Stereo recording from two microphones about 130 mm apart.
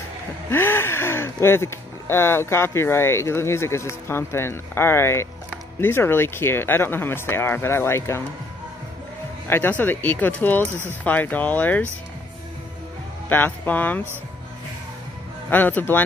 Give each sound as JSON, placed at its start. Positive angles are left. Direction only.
{"t": 0.5, "sound": "speech", "side_deg": 15}
{"t": 9.5, "sound": "speech", "side_deg": 15}
{"t": 13.3, "sound": "speech", "side_deg": 15}
{"t": 15.5, "sound": "speech", "side_deg": 15}